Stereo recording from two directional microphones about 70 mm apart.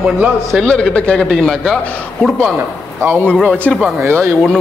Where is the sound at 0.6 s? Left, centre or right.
Centre.